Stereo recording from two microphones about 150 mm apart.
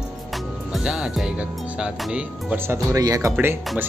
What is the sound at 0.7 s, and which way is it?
Speech, 5° right (ahead or behind).